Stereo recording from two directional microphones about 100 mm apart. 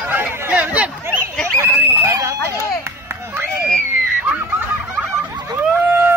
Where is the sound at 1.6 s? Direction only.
30° right (ahead or behind).